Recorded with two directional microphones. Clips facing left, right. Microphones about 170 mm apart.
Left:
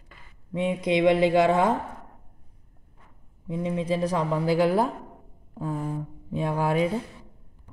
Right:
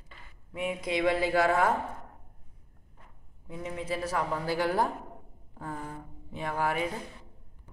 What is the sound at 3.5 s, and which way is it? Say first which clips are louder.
A woman's voice: left 8 dB; 20° left (ahead or behind).